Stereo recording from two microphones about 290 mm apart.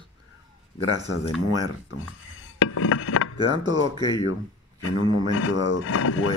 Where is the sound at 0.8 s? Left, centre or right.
Centre.